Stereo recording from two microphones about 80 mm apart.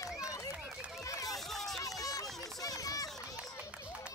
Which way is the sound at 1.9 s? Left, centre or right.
Left.